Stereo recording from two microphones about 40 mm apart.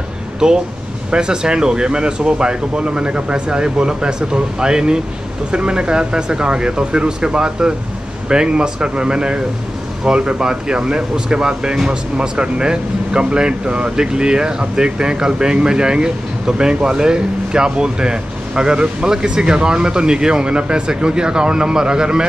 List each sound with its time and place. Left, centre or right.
0.4 s speech: right